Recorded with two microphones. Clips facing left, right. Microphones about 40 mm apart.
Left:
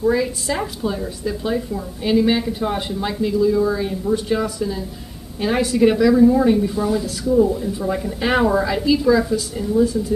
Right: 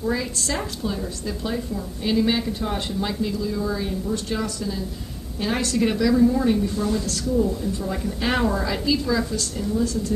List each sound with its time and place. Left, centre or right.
0.0 s a woman's voice: centre